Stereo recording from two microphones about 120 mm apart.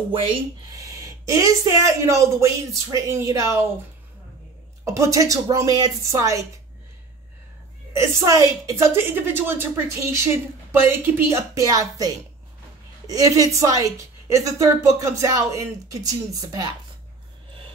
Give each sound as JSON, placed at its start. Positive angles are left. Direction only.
{"t": 0.7, "sound": "a woman's voice", "side_deg": -30}
{"t": 4.8, "sound": "a woman's voice", "side_deg": -25}
{"t": 7.9, "sound": "a woman's voice", "side_deg": -25}